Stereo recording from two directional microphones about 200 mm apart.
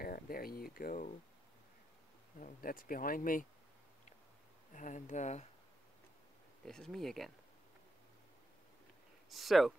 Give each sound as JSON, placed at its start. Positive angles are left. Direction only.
{"t": 0.0, "sound": "speech", "side_deg": 45}
{"t": 2.4, "sound": "speech", "side_deg": 45}
{"t": 4.7, "sound": "speech", "side_deg": 40}
{"t": 6.6, "sound": "speech", "side_deg": 5}
{"t": 9.3, "sound": "speech", "side_deg": 0}